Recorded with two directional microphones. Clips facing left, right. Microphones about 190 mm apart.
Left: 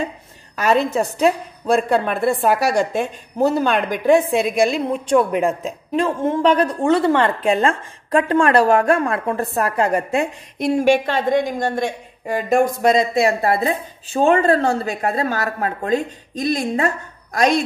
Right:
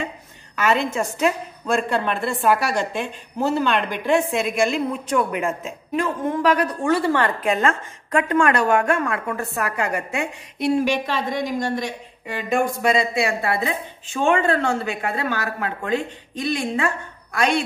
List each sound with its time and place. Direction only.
0.6 s a woman's voice: 35° left (ahead or behind); by 11.8 s 50° left (ahead or behind)
12.3 s a woman's voice: 40° left (ahead or behind)